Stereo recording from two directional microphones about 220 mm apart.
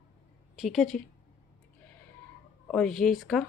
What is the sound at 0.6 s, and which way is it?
Speech, centre (ahead or behind).